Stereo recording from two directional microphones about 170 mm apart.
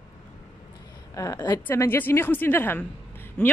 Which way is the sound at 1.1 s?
20° left (ahead or behind).